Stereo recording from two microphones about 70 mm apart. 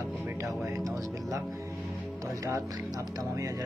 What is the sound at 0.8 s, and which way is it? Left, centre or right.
Speech, right.